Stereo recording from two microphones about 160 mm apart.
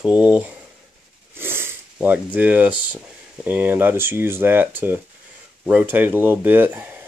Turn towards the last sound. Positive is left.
turn(degrees=-10)  # may be behind; listen again after turning